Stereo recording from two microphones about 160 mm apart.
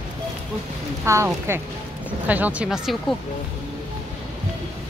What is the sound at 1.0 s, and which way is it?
Speech, 15° right (ahead or behind).